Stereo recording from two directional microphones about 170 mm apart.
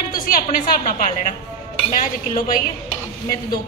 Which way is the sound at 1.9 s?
55° left (ahead or behind).